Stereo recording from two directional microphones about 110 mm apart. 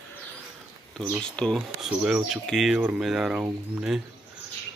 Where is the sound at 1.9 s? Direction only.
5° right (ahead or behind).